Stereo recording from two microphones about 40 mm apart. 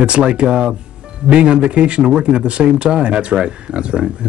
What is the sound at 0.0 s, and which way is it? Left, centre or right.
Speech, right.